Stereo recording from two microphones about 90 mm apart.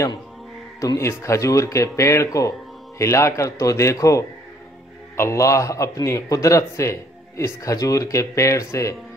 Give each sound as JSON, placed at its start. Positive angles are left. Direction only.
{"t": 0.7, "sound": "a man's voice", "side_deg": 35}